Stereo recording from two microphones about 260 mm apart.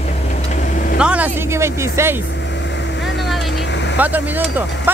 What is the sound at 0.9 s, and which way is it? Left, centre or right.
Speech, centre.